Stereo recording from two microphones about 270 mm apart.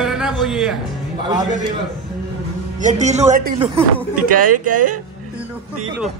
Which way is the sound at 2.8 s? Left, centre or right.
Right.